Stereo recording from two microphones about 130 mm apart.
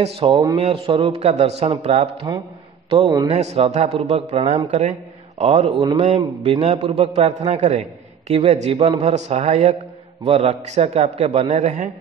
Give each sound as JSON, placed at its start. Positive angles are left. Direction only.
{"t": 0.0, "sound": "a man's voice", "side_deg": -45}
{"t": 0.6, "sound": "a man's voice", "side_deg": -50}
{"t": 2.3, "sound": "a man's voice", "side_deg": -30}
{"t": 3.3, "sound": "a man's voice", "side_deg": -60}